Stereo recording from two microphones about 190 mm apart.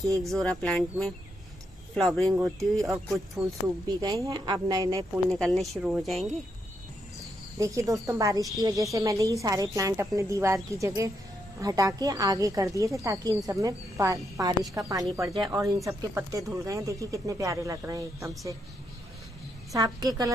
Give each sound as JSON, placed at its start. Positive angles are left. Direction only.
{"t": 0.3, "sound": "speech", "side_deg": 5}
{"t": 3.8, "sound": "speech", "side_deg": -20}
{"t": 5.3, "sound": "speech", "side_deg": 0}
{"t": 7.5, "sound": "speech", "side_deg": -15}
{"t": 19.7, "sound": "speech", "side_deg": -20}